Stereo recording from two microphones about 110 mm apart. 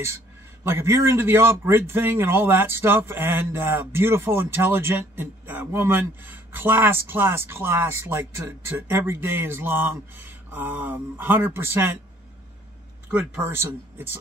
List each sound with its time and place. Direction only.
0.7 s a man's voice: 25° right (ahead or behind)
13.1 s a man's voice: 20° right (ahead or behind)